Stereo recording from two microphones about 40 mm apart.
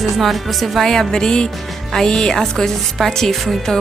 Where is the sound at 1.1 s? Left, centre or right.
Centre.